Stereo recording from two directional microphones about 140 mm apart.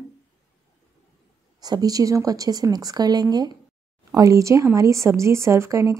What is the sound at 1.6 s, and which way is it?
Speech, 25° right (ahead or behind).